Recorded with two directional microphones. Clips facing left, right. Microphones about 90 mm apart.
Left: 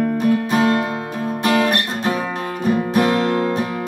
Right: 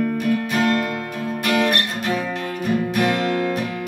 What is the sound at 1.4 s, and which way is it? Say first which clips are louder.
Guitar: left 2 dB; 30° left (ahead or behind).